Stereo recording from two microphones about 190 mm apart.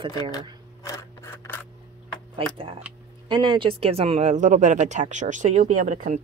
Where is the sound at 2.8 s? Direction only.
5° right (ahead or behind).